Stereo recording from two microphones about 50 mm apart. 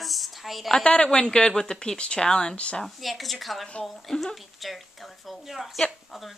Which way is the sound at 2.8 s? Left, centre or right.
Centre.